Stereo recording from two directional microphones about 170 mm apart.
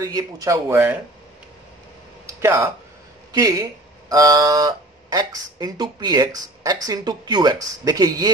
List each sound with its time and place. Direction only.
0.0 s speech: 20° right (ahead or behind)
2.4 s speech: 15° right (ahead or behind)